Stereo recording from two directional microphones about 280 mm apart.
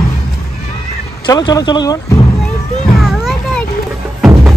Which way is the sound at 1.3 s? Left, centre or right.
Centre.